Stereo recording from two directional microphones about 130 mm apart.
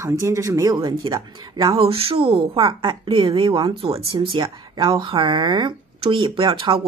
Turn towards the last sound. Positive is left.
turn(degrees=-40)  # may be behind; listen again after turning